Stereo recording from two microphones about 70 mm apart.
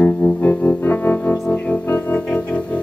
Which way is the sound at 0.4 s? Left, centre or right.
Left.